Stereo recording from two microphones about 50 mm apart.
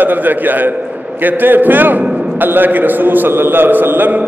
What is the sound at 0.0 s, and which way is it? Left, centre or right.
A man's voice, right.